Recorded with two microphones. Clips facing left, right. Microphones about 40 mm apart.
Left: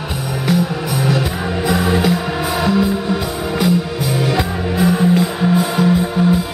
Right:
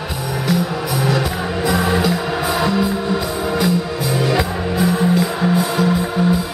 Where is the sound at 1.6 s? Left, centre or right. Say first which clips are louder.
Left 1 dB; centre.